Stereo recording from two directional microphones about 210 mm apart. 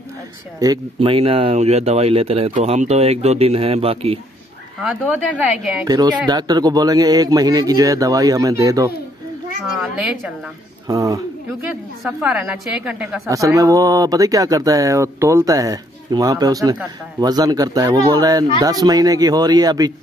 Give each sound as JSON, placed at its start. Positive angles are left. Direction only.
{"t": 0.6, "sound": "speech", "side_deg": -20}
{"t": 4.8, "sound": "a woman's voice", "side_deg": -5}
{"t": 5.9, "sound": "speech", "side_deg": -20}
{"t": 9.8, "sound": "a woman's voice", "side_deg": -5}
{"t": 10.9, "sound": "speech", "side_deg": -15}
{"t": 12.0, "sound": "a woman's voice", "side_deg": -5}
{"t": 13.3, "sound": "speech", "side_deg": -15}